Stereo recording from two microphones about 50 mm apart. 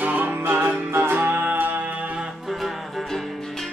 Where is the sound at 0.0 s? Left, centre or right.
Right.